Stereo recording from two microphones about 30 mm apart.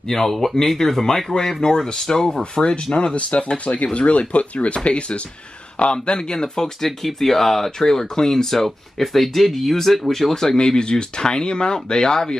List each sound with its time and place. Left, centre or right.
0.1 s speech: centre
2.6 s speech: left; by 6.9 s centre
7.1 s speech: centre
10.3 s speech: centre
10.8 s speech: left